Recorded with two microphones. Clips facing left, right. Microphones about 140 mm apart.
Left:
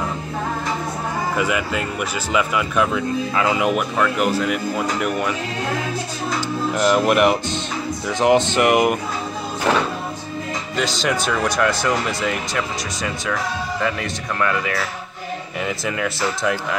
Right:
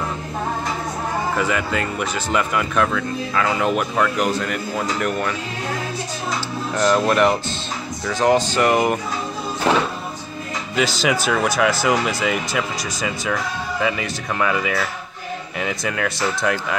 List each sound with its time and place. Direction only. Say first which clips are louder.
1.3 s speech: left 1 dB; 5° left (ahead or behind)
2.9 s speech: left 2 dB; 20° left (ahead or behind)
6.7 s speech: even; 10° left (ahead or behind)
10.8 s speech: right 2 dB; 5° right (ahead or behind)